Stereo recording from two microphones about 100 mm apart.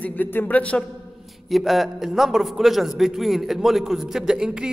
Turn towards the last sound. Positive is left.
turn(degrees=-10)  # may be behind; listen again after turning